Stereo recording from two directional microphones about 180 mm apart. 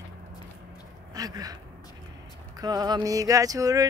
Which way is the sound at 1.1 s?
20° right (ahead or behind).